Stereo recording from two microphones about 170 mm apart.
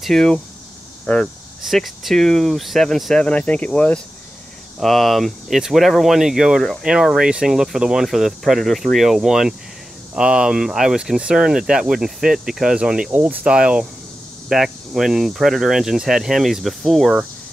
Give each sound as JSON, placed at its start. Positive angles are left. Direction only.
{"t": 0.0, "sound": "speech", "side_deg": 5}